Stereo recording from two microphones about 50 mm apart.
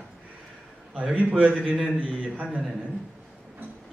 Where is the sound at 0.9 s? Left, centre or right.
Right.